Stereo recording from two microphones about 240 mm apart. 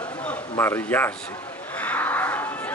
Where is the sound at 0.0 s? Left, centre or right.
Centre.